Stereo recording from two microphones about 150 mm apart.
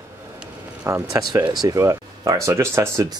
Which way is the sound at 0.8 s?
20° right (ahead or behind).